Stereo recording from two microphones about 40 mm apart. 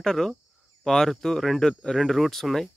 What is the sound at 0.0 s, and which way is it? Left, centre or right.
Speech, centre.